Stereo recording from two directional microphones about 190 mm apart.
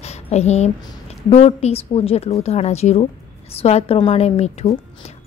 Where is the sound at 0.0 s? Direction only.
35° left (ahead or behind).